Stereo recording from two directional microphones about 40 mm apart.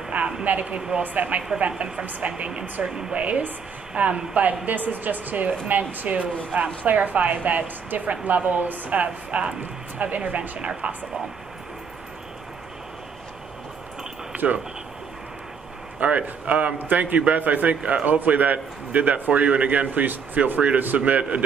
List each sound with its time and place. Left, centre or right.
0.1 s a sound: right
0.5 s a woman's voice: right
1.7 s a woman's voice: right
2.0 s a man's voice: right
2.3 s a woman's voice: right
2.8 s a woman's voice: centre
3.2 s a woman's voice: right
4.4 s a man's voice: right
14.3 s a sound: right
16.0 s a woman's voice: right
16.7 s a man's voice: right
17.0 s a man's voice: right